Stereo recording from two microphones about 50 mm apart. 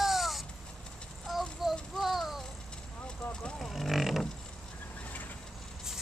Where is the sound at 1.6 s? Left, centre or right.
Centre.